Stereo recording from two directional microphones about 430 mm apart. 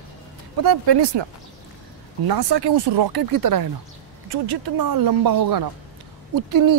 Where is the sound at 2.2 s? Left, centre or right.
Right.